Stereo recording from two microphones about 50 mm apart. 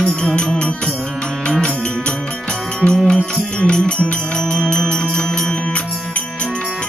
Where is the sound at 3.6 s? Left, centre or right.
Left.